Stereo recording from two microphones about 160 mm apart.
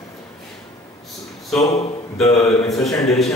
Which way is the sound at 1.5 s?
40° left (ahead or behind).